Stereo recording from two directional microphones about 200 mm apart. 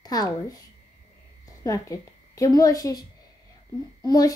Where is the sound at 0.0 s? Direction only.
20° left (ahead or behind).